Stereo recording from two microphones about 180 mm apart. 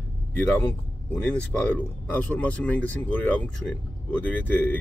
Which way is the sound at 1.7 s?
5° left (ahead or behind).